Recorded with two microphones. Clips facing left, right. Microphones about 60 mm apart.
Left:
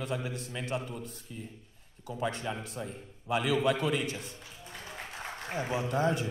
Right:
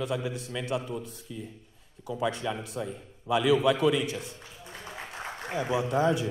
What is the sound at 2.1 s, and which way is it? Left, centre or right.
A man's voice, left.